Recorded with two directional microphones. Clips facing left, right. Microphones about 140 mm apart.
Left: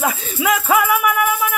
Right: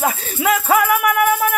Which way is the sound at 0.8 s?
50° right (ahead or behind).